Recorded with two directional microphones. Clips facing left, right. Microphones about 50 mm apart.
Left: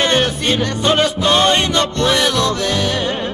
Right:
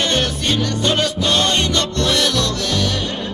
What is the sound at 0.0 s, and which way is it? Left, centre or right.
Music, centre.